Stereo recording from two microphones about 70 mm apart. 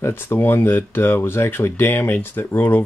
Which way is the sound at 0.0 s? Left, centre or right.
Left.